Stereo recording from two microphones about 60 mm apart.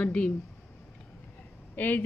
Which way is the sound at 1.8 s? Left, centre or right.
Left.